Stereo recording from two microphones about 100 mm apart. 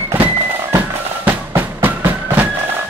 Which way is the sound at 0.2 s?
20° right (ahead or behind).